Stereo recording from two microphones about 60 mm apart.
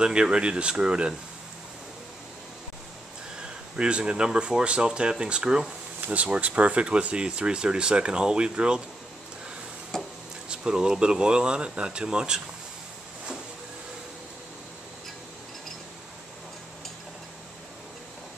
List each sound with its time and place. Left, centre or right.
0.0 s speech: centre
3.7 s speech: centre
5.9 s insect: right
6.2 s speech: right
9.9 s a sound: centre
10.5 s speech: centre